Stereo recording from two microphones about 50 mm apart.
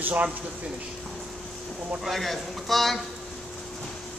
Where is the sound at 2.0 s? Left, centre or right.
Centre.